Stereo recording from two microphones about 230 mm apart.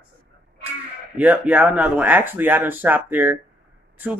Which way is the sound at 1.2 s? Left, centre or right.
Centre.